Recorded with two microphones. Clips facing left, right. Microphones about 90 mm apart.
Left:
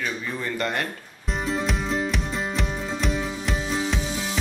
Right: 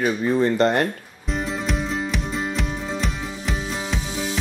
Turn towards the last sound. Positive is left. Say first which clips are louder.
# left 1 dB
turn(degrees=0)  # may be behind; listen again after turning